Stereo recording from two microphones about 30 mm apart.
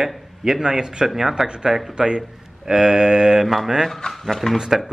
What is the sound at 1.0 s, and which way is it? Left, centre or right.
Speech, centre.